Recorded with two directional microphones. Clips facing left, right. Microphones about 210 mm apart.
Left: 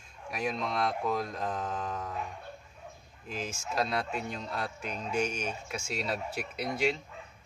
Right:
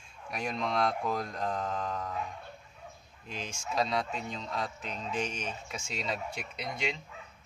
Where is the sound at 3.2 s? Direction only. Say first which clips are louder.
Left 2 dB; 5° left (ahead or behind).